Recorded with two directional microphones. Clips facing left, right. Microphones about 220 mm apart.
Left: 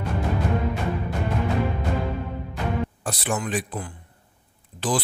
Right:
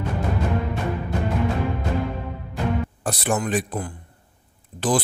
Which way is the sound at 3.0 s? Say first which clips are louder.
Right 3 dB; 45° right (ahead or behind).